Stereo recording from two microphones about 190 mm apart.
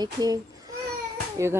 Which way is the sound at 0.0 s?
20° right (ahead or behind).